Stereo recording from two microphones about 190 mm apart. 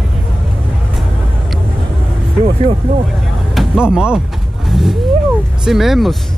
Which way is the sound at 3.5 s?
5° right (ahead or behind).